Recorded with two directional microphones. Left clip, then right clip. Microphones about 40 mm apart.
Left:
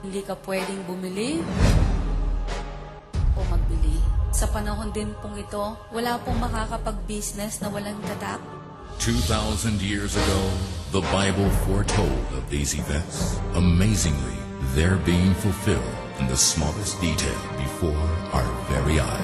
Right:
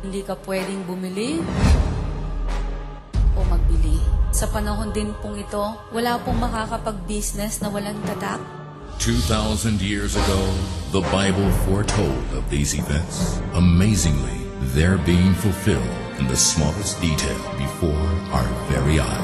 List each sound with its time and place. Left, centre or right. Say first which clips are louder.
0.1 s speech: right 2 dB; left
4.4 s speech: right 4 dB; left